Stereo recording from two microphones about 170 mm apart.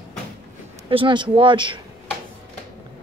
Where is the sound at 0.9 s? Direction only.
30° right (ahead or behind).